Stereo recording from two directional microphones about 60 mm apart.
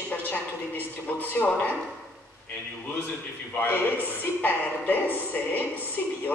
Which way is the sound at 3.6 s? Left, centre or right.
Left.